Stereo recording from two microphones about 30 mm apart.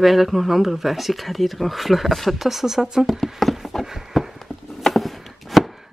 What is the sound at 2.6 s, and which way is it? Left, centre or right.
Speech, centre.